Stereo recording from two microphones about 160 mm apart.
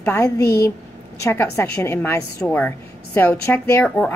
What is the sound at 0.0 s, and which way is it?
A woman's voice, 15° left (ahead or behind).